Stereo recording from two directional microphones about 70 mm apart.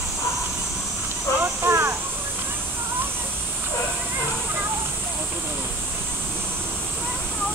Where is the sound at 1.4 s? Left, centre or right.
Right.